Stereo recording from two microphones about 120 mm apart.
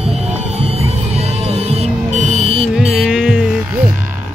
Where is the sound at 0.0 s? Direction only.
60° right (ahead or behind).